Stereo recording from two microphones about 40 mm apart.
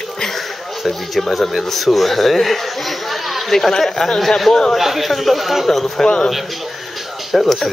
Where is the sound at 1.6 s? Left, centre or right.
Centre.